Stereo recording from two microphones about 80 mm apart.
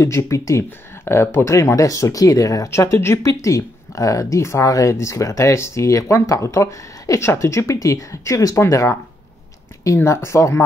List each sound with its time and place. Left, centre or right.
0.0 s speech: left
9.9 s speech: left